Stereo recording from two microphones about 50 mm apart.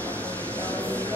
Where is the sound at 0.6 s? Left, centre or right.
Left.